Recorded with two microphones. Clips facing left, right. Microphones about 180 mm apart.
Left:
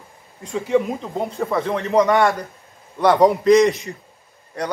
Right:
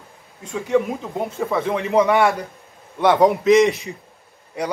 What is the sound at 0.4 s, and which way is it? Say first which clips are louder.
A man's voice: even; centre (ahead or behind).